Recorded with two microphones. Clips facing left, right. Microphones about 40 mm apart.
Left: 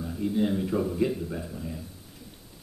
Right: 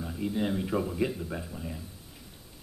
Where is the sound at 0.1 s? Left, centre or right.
Centre.